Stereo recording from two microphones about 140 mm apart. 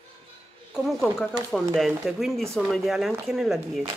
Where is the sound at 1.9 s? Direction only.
Centre (ahead or behind).